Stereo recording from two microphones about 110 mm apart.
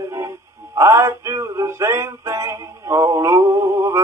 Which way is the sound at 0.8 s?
25° right (ahead or behind).